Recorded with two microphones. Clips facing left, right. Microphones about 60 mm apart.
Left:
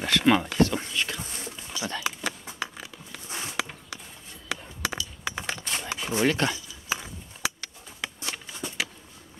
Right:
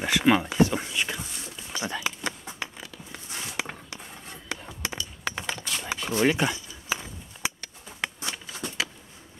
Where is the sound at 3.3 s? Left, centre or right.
Left.